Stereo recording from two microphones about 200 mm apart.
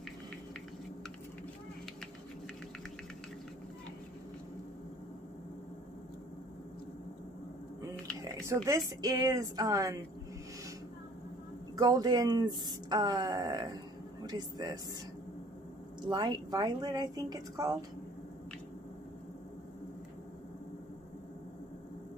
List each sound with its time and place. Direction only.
8.6 s speech: 15° right (ahead or behind)
11.8 s speech: 20° right (ahead or behind)
16.0 s speech: 20° right (ahead or behind)